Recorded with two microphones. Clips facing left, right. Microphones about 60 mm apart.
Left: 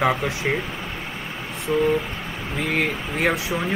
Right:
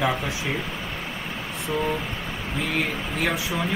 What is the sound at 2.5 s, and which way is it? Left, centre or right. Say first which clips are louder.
Speech: left 3 dB; left.